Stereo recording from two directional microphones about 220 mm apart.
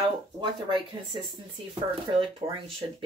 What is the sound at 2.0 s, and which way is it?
Speech, 25° right (ahead or behind).